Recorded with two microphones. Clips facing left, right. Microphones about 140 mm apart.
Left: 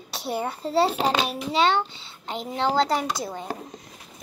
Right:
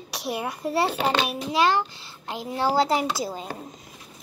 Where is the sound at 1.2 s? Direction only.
Centre (ahead or behind).